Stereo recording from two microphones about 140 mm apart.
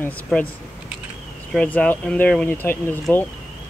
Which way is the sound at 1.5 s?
10° left (ahead or behind).